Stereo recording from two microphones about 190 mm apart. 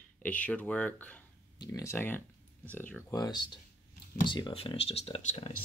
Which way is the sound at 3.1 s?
20° left (ahead or behind).